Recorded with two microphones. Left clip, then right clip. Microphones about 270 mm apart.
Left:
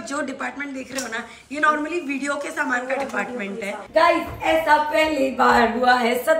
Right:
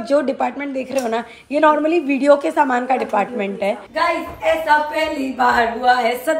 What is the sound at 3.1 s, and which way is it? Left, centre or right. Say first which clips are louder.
Speech: right 7 dB; right.